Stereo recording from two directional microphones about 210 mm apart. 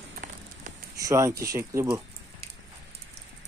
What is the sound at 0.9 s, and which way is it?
Speech, 15° right (ahead or behind).